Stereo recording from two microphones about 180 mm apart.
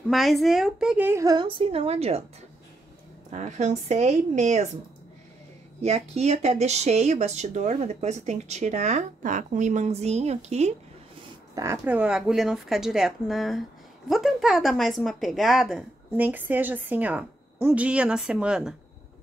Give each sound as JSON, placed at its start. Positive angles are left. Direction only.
{"t": 0.1, "sound": "a woman's voice", "side_deg": 0}
{"t": 3.3, "sound": "speech", "side_deg": -40}
{"t": 5.8, "sound": "speech", "side_deg": -35}
{"t": 11.5, "sound": "speech", "side_deg": -15}